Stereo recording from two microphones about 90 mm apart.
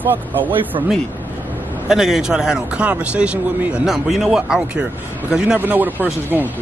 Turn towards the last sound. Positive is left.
turn(degrees=-20)  # may be behind; listen again after turning